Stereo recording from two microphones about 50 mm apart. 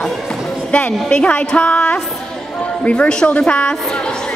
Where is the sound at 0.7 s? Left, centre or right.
Left.